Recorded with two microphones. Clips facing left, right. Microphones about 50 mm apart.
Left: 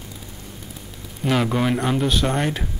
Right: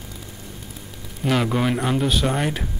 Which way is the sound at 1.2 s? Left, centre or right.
Centre.